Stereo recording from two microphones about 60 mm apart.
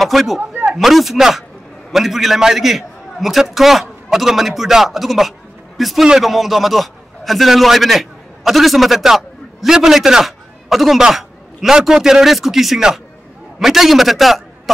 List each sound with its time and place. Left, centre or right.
0.0 s a man's voice: centre
0.4 s snake: right
0.7 s a man's voice: centre